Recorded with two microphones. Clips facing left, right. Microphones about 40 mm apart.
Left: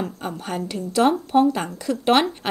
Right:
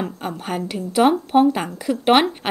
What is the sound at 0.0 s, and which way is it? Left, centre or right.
Speech, centre.